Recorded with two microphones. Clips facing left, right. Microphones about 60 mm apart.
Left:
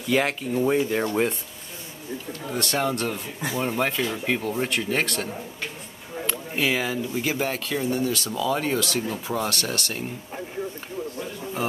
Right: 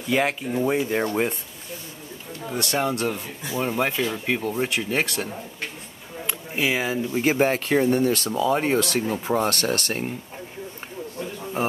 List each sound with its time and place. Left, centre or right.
0.1 s speech: centre
2.5 s speech: centre; by 8.3 s right
8.3 s speech: right